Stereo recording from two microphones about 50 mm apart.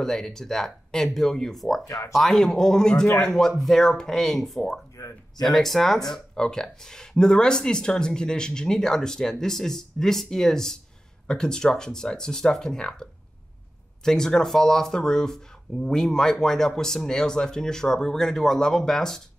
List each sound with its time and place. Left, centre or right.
0.0 s speech: centre